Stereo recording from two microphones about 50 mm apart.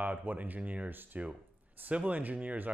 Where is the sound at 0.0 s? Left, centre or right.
Right.